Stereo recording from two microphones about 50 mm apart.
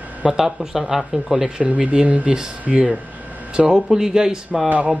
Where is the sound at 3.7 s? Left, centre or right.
Centre.